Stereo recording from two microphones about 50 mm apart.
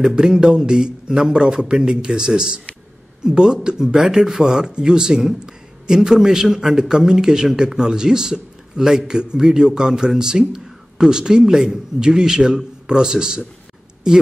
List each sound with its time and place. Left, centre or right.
0.0 s a man's voice: centre